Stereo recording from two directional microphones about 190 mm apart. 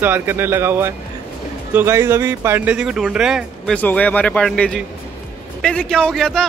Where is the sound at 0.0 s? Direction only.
10° right (ahead or behind).